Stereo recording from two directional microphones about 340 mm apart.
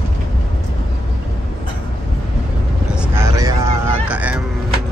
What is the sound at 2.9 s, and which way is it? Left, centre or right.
Vehicle, centre.